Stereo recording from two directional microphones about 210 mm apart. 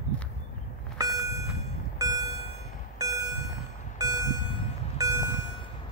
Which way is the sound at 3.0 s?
15° right (ahead or behind).